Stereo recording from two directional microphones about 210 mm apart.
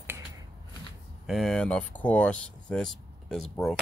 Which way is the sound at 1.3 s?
Centre (ahead or behind).